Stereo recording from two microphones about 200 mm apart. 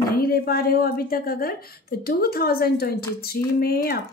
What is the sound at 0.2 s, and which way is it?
A woman's voice, 50° left (ahead or behind).